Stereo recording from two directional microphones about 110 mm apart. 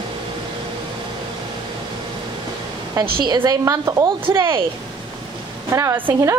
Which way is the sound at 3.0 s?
40° right (ahead or behind).